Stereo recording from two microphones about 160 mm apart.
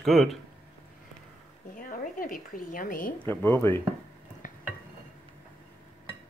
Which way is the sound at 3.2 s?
10° left (ahead or behind).